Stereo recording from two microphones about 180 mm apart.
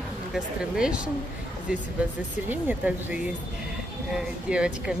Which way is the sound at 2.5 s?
10° right (ahead or behind).